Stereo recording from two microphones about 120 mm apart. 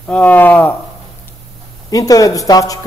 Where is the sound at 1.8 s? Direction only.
30° left (ahead or behind).